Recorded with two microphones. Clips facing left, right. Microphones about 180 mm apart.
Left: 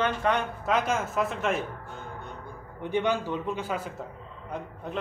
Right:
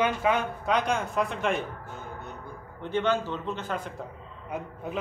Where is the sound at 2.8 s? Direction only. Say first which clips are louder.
Even; 15° left (ahead or behind).